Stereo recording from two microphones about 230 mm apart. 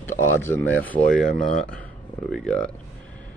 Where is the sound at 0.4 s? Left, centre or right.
Centre.